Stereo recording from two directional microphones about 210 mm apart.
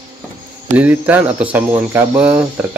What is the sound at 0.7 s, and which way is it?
Speech, 10° right (ahead or behind).